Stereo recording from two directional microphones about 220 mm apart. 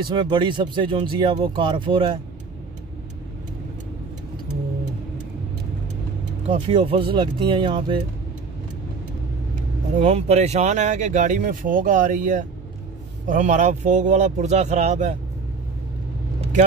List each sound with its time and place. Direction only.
0.1 s speech: 20° right (ahead or behind)
6.5 s speech: 25° right (ahead or behind)
9.9 s speech: 30° right (ahead or behind)